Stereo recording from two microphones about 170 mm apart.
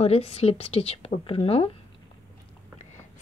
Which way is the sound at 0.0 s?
35° left (ahead or behind).